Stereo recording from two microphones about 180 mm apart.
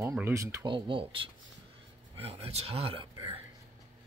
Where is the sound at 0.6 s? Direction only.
25° right (ahead or behind).